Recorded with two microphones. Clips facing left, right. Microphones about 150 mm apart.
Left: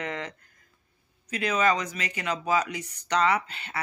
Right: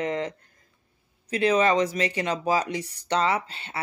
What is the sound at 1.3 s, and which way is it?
Speech, 30° right (ahead or behind).